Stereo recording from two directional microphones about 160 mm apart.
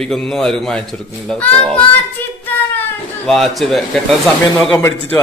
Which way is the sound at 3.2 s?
Centre (ahead or behind).